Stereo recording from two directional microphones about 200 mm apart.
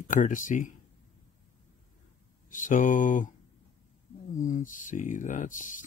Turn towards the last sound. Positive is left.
turn(degrees=40)  # may be behind; listen again after turning